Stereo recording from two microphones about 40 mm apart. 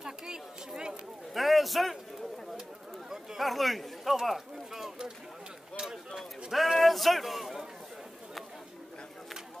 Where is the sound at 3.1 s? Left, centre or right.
Centre.